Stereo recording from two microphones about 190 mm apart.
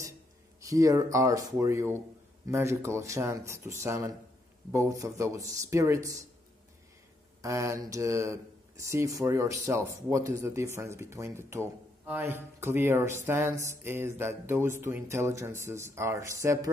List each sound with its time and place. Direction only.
0.6 s speech: 15° right (ahead or behind)
7.4 s speech: 15° right (ahead or behind)